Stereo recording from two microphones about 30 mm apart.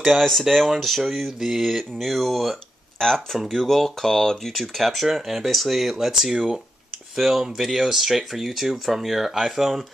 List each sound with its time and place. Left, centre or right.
0.0 s speech: centre
3.3 s speech: centre
4.0 s speech: centre
4.5 s speech: centre
5.0 s speech: centre